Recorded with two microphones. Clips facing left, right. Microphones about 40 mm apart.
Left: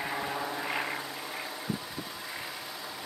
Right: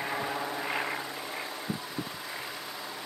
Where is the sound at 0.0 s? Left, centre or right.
Centre.